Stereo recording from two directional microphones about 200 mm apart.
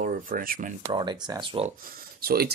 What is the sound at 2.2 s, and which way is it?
Speech, 50° right (ahead or behind).